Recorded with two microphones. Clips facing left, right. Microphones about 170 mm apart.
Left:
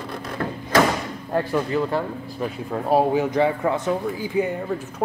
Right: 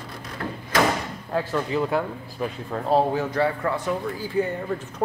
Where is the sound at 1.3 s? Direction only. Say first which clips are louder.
Left 3 dB; 10° left (ahead or behind).